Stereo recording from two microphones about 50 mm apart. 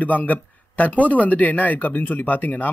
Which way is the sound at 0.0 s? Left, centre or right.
Left.